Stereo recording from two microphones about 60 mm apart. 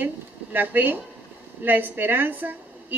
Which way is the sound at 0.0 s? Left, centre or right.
Right.